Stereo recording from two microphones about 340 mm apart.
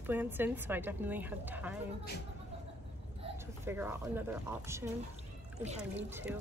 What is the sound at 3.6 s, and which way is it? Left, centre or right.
Speech, centre.